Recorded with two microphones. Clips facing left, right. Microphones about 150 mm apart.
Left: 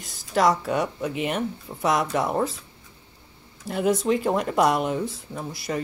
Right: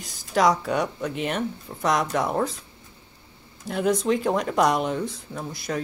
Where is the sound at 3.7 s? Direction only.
5° left (ahead or behind).